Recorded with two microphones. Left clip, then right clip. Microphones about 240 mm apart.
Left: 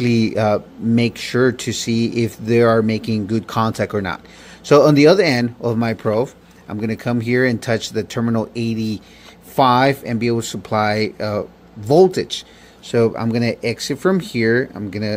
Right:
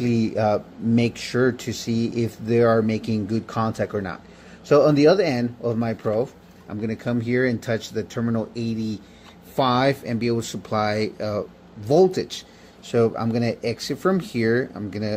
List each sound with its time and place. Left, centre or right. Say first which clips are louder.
0.0 s speech: left 4 dB; left